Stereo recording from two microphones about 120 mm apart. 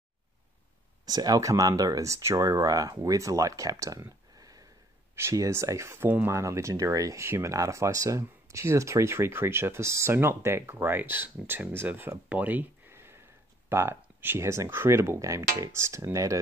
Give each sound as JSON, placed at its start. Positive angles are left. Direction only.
{"t": 1.0, "sound": "speech", "side_deg": -30}